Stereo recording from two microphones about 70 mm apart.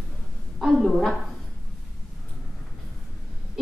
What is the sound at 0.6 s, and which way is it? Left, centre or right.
Speech, centre.